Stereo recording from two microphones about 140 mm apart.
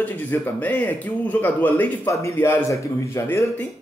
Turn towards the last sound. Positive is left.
turn(degrees=20)  # may be behind; listen again after turning